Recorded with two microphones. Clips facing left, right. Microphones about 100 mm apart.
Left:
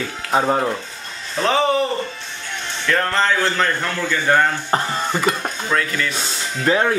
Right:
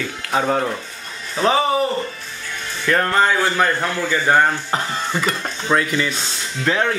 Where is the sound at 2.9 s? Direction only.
10° right (ahead or behind).